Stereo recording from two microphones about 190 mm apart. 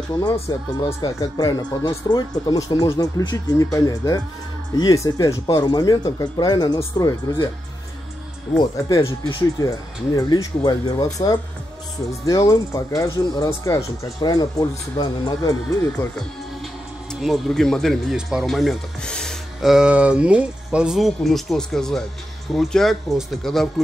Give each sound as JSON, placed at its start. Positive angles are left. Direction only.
{"t": 0.1, "sound": "speech", "side_deg": 20}
{"t": 8.5, "sound": "speech", "side_deg": 20}
{"t": 12.1, "sound": "speech", "side_deg": 15}
{"t": 17.1, "sound": "speech", "side_deg": 0}